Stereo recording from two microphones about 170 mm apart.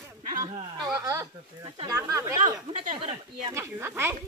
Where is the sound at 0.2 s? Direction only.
50° right (ahead or behind).